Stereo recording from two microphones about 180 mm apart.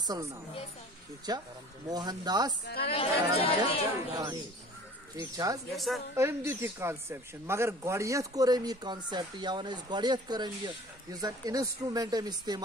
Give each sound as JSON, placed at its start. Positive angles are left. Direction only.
{"t": 0.0, "sound": "a woman's voice", "side_deg": -20}
{"t": 2.6, "sound": "a woman's voice", "side_deg": 60}
{"t": 2.9, "sound": "speech", "side_deg": 30}
{"t": 4.1, "sound": "speech", "side_deg": -25}
{"t": 5.7, "sound": "a woman's voice", "side_deg": 0}
{"t": 6.1, "sound": "speech", "side_deg": -15}